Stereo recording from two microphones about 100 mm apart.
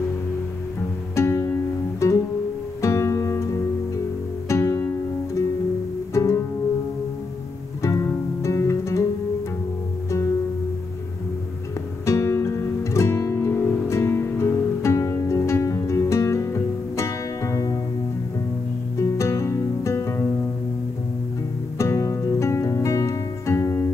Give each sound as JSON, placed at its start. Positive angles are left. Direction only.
{"t": 1.1, "sound": "music", "side_deg": 25}
{"t": 7.8, "sound": "music", "side_deg": 30}
{"t": 12.1, "sound": "music", "side_deg": 30}
{"t": 18.9, "sound": "music", "side_deg": 30}
{"t": 21.7, "sound": "music", "side_deg": 30}